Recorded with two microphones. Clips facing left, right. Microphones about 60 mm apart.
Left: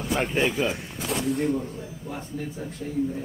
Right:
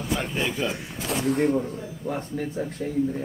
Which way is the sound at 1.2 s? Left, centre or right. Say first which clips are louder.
Right 4 dB; right.